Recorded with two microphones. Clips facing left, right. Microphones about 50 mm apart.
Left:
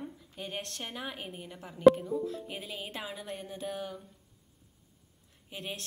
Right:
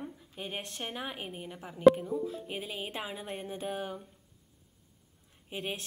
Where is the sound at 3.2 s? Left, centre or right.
Right.